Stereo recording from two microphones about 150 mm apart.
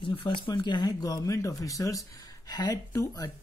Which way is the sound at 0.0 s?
35° left (ahead or behind).